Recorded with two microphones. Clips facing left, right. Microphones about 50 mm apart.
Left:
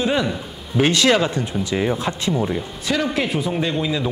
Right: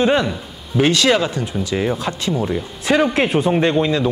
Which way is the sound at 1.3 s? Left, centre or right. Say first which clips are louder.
Right 1 dB; left.